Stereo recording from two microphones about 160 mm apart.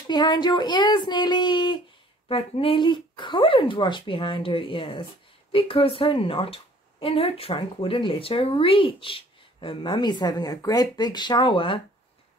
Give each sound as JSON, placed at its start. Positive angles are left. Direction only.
{"t": 0.1, "sound": "speech", "side_deg": 25}